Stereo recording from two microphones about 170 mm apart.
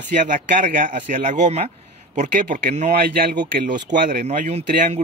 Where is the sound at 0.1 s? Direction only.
50° right (ahead or behind).